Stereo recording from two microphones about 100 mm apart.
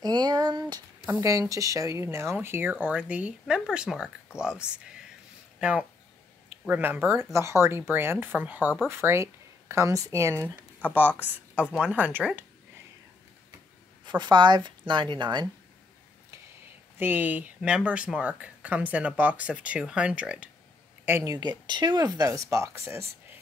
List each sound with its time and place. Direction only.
0.0 s a sound: 45° right (ahead or behind)
1.5 s speech: 35° right (ahead or behind)
10.9 s speech: 20° right (ahead or behind)
14.0 s a woman's voice: 50° right (ahead or behind)
17.0 s speech: 20° right (ahead or behind)
21.2 s speech: 40° right (ahead or behind)